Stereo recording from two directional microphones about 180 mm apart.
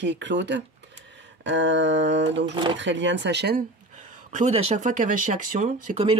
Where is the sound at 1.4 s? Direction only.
80° right.